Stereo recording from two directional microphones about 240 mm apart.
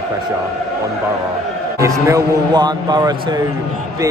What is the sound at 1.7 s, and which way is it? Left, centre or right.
Speech, centre.